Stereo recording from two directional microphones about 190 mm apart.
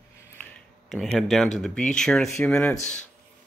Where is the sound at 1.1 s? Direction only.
Centre (ahead or behind).